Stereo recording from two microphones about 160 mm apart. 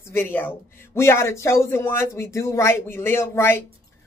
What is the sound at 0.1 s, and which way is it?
Speech, 15° left (ahead or behind).